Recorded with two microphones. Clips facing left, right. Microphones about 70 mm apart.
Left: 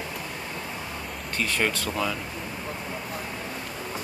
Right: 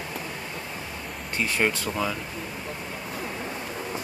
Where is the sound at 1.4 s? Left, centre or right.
Centre.